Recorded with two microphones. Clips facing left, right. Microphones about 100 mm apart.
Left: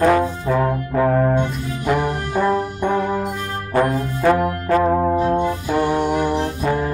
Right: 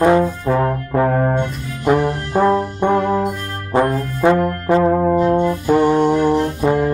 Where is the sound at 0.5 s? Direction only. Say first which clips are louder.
Even; 40° right (ahead or behind).